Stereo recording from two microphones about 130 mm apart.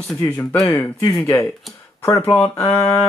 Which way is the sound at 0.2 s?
20° left (ahead or behind).